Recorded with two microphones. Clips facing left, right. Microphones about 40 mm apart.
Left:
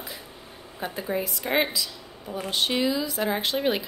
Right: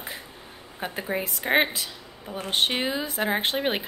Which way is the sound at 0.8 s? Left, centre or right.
Right.